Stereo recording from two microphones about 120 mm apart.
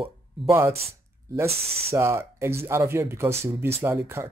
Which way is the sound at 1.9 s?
20° right (ahead or behind).